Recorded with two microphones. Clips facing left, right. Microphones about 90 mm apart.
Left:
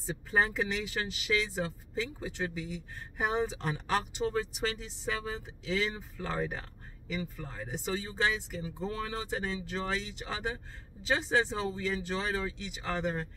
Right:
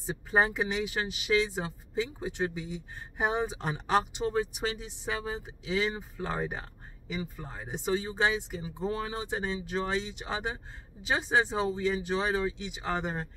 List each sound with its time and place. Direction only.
0.0 s speech: 20° right (ahead or behind)